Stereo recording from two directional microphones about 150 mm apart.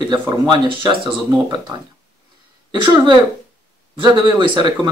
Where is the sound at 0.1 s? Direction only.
30° right (ahead or behind).